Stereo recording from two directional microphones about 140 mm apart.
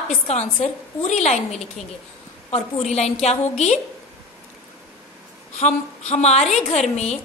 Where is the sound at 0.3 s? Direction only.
50° left (ahead or behind).